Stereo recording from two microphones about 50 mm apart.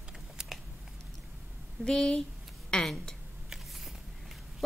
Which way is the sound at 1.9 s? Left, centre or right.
Centre.